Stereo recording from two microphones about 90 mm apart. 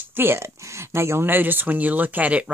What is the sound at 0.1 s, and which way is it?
Speech, 25° right (ahead or behind).